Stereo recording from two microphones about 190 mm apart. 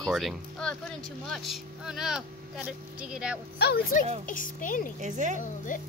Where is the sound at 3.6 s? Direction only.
55° left (ahead or behind).